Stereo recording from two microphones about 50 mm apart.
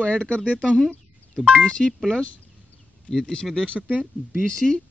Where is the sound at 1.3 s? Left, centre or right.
Centre.